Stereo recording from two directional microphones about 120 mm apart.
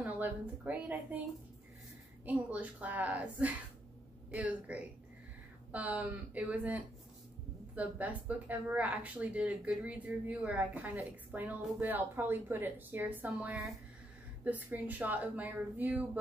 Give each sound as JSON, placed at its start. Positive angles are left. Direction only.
{"t": 0.0, "sound": "a woman's voice", "side_deg": -15}
{"t": 2.2, "sound": "speech", "side_deg": -10}